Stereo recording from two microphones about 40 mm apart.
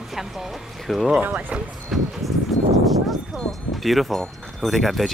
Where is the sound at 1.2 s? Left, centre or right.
Right.